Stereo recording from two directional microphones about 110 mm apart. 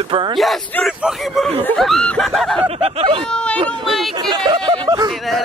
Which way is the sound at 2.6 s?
55° right (ahead or behind).